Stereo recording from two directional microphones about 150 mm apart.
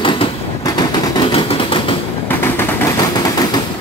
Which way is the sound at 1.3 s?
35° left (ahead or behind).